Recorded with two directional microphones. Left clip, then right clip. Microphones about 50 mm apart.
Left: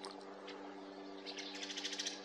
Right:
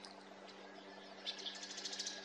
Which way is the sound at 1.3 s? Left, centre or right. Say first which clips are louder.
Left 2 dB; left.